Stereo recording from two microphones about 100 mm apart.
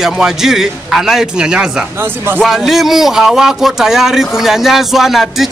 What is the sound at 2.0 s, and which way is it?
Speech, 25° right (ahead or behind).